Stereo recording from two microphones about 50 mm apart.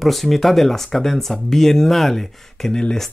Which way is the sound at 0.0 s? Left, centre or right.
Centre.